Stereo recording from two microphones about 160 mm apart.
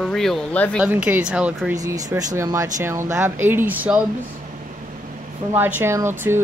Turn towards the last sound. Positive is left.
turn(degrees=-15)  # may be behind; listen again after turning